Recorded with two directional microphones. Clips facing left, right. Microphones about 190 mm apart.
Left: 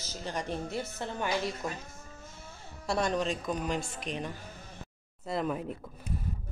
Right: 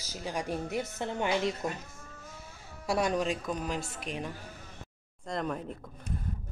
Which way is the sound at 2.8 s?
10° right (ahead or behind).